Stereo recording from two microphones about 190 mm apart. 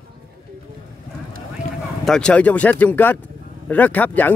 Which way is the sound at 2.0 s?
5° left (ahead or behind).